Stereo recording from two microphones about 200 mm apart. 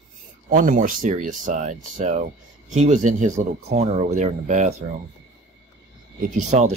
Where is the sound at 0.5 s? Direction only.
40° right (ahead or behind).